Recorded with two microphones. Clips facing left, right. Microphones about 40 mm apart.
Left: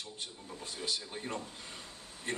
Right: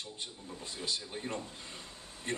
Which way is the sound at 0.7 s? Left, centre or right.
Right.